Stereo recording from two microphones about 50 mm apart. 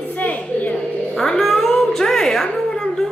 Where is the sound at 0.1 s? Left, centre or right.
Left.